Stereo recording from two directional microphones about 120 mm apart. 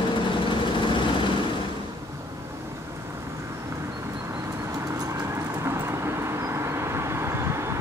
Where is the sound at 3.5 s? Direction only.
25° right (ahead or behind).